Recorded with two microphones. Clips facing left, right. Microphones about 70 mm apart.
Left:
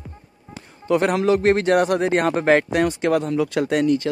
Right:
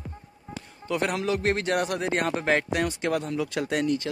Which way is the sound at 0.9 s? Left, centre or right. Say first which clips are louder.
Left 8 dB; left.